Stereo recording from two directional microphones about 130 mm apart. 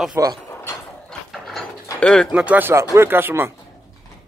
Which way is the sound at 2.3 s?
10° right (ahead or behind).